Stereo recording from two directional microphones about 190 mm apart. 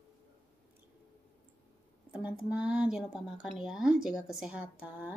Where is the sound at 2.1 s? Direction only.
5° right (ahead or behind).